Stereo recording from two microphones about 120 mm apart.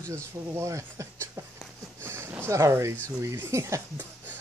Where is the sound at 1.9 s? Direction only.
20° right (ahead or behind).